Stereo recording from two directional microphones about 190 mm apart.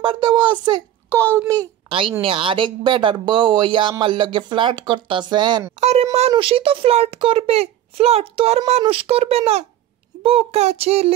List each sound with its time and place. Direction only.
0.0 s a woman's voice: 25° right (ahead or behind)
5.8 s a child's voice: 35° right (ahead or behind)